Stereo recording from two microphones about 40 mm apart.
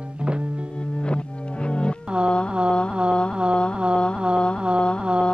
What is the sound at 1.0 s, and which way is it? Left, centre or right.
Music, left.